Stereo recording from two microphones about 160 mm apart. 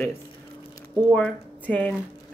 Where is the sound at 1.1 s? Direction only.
10° left (ahead or behind).